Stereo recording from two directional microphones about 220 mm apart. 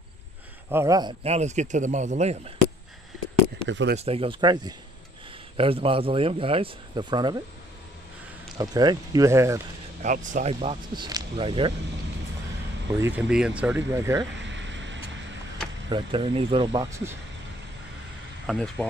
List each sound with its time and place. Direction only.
0.7 s speech: 15° right (ahead or behind)
1.2 s speech: 30° right (ahead or behind)
3.6 s speech: 50° right (ahead or behind)
4.0 s speech: 25° right (ahead or behind)
8.5 s speech: 15° right (ahead or behind)
10.0 s speech: 35° right (ahead or behind)
13.0 s speech: 5° right (ahead or behind)
14.3 s a sound: 55° right (ahead or behind)
15.9 s speech: 25° right (ahead or behind)
18.5 s speech: centre (ahead or behind)